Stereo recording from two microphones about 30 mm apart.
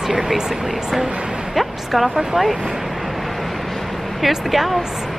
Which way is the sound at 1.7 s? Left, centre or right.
Centre.